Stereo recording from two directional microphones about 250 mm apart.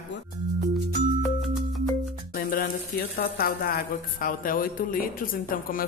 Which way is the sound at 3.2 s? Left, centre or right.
Left.